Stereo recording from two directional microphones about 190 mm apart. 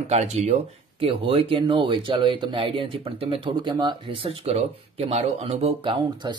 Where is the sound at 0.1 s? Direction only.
35° right (ahead or behind).